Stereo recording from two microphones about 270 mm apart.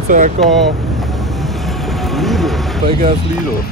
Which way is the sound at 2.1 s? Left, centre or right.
Centre.